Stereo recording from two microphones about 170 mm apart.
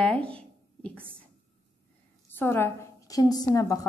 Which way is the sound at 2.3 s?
15° left (ahead or behind).